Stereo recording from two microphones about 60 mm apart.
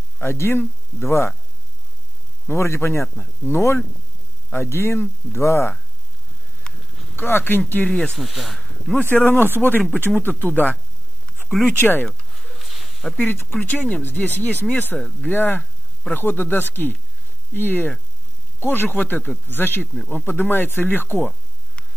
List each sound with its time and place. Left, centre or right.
0.2 s speech: left
2.5 s speech: left
6.7 s livestock: centre
7.2 s speech: left
8.2 s speech: centre
9.1 s speech: left
11.8 s speech: left
12.1 s a sound: centre
13.5 s speech: left